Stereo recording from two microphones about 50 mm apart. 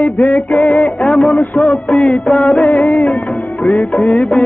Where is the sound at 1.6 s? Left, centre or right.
Left.